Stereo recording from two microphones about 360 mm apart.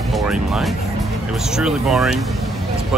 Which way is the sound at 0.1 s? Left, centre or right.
Centre.